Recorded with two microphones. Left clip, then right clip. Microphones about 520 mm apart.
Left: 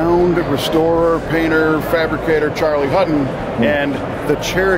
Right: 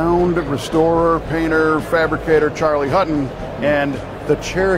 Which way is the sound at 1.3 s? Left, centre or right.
Right.